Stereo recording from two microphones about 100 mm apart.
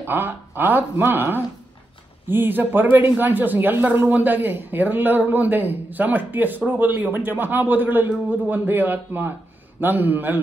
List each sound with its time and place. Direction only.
0.0 s speech: 20° right (ahead or behind)